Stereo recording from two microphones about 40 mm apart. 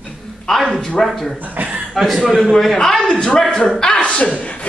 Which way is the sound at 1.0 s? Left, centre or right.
Centre.